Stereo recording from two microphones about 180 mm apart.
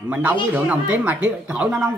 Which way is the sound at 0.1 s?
10° right (ahead or behind).